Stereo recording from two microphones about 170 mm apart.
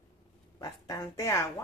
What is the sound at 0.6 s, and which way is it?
Speech, 20° left (ahead or behind).